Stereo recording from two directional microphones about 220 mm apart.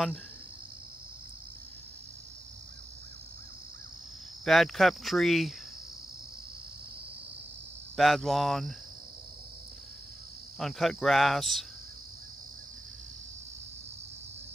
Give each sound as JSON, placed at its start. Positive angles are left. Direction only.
{"t": 4.5, "sound": "speech", "side_deg": 0}
{"t": 7.9, "sound": "speech", "side_deg": 0}
{"t": 10.6, "sound": "speech", "side_deg": 0}